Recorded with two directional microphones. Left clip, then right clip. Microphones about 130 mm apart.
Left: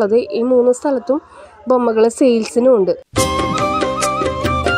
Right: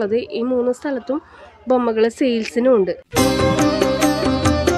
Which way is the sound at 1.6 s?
30° left (ahead or behind).